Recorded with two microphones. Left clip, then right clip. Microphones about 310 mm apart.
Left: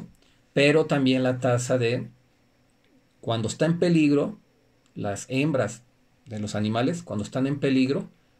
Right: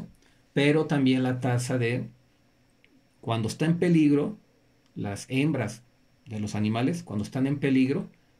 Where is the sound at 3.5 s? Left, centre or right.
Centre.